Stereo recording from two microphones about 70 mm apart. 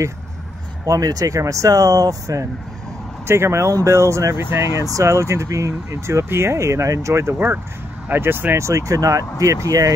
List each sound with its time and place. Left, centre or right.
0.8 s speech: right
3.3 s speech: right
7.3 s speech: right
8.5 s speech: right